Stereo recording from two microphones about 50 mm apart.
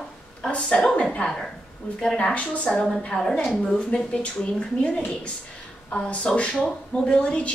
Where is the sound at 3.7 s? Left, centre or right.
Centre.